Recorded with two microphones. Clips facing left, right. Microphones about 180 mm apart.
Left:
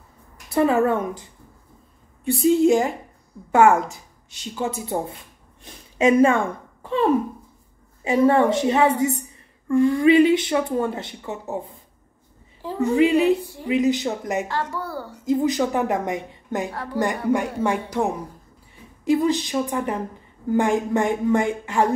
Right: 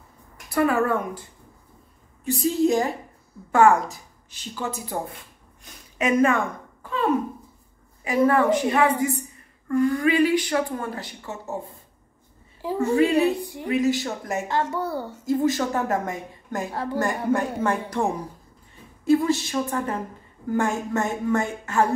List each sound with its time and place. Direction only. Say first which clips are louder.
0.5 s speech: left 3 dB; 25° left (ahead or behind)
3.5 s speech: left 1 dB; 20° left (ahead or behind)
12.9 s a woman's voice: left 2 dB; 15° left (ahead or behind)
13.4 s a woman's voice: right 2 dB; 15° right (ahead or behind)
13.7 s speech: left 2 dB; 20° left (ahead or behind)
14.5 s a woman's voice: right 2 dB; 20° right (ahead or behind)
15.2 s a woman's voice: left 2 dB; 15° left (ahead or behind)
16.7 s a woman's voice: right 1 dB; 20° right (ahead or behind)
17.0 s a woman's voice: left 3 dB; 15° left (ahead or behind)